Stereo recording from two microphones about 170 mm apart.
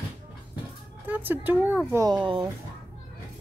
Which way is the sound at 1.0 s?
10° right (ahead or behind).